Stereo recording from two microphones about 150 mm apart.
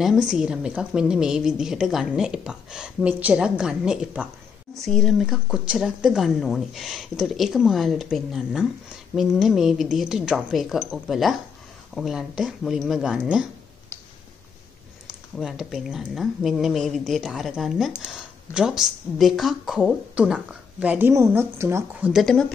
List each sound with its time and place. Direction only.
0.0 s speech: 5° right (ahead or behind)
15.0 s speech: centre (ahead or behind); by 22.1 s 15° right (ahead or behind)
22.1 s speech: 5° left (ahead or behind)